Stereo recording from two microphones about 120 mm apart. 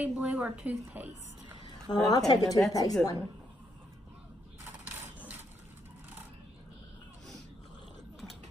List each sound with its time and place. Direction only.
0.0 s a woman's voice: 10° right (ahead or behind)
1.9 s a woman's voice: 35° left (ahead or behind)
4.8 s rub: 15° right (ahead or behind)